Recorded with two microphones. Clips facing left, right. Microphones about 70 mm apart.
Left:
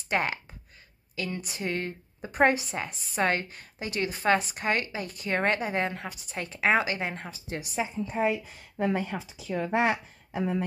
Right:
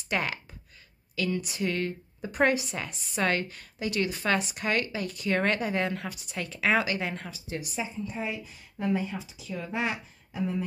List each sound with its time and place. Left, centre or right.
0.1 s speech: left
7.4 s a woman's voice: left
8.2 s speech: left